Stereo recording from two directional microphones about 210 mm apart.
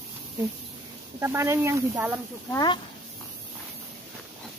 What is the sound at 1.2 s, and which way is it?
Speech, 10° right (ahead or behind).